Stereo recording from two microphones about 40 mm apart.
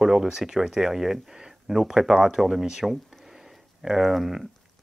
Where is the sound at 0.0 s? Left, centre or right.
Centre.